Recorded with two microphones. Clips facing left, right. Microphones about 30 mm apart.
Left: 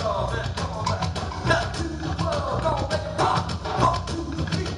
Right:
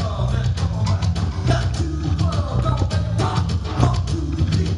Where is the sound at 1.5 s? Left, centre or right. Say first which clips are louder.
Left 1 dB; left.